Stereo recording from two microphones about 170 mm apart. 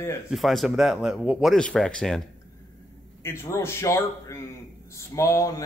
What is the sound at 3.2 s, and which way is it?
A man's voice, 15° left (ahead or behind).